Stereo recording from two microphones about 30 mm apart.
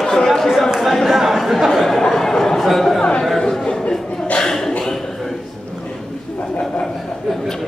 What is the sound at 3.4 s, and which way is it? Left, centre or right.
Chatter, centre.